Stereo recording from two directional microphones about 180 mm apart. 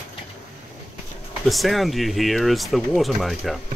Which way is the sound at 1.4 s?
Centre (ahead or behind).